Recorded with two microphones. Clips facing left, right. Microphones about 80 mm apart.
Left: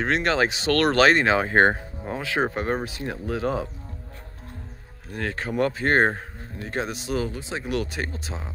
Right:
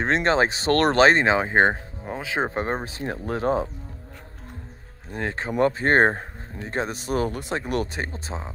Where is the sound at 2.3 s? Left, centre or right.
Right.